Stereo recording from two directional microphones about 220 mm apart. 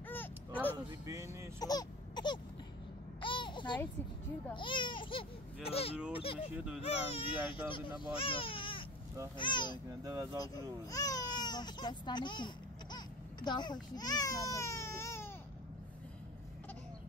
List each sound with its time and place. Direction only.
0.1 s a sound: 10° left (ahead or behind)
0.7 s speech: 15° right (ahead or behind)
1.6 s a sound: 15° left (ahead or behind)
3.2 s babbling: 20° left (ahead or behind)
4.6 s speech: 20° left (ahead or behind)
6.5 s speech: 5° right (ahead or behind)
6.9 s speech: 25° left (ahead or behind)
10.0 s speech: 15° right (ahead or behind)
10.9 s speech: 15° left (ahead or behind)